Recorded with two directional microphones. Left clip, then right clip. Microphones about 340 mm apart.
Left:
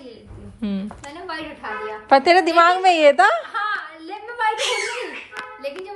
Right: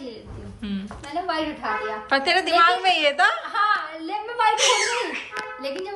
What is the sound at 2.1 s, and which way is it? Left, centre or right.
A woman's voice, centre.